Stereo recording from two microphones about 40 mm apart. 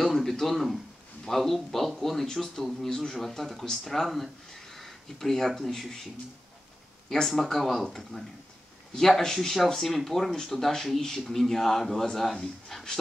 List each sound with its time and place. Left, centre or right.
0.0 s a sound: centre
1.2 s a man's voice: centre
7.1 s a man's voice: centre